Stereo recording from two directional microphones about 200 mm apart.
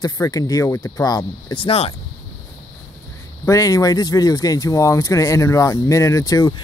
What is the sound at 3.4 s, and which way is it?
Speech, 15° left (ahead or behind).